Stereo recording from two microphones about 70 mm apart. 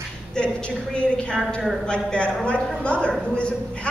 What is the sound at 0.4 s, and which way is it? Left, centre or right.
A man's voice, centre.